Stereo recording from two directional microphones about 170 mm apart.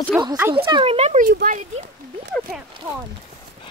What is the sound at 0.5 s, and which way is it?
Speech, 30° right (ahead or behind).